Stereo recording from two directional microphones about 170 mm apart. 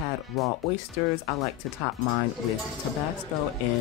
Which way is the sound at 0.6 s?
Centre (ahead or behind).